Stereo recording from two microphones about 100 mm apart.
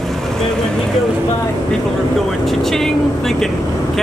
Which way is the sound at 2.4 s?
Centre (ahead or behind).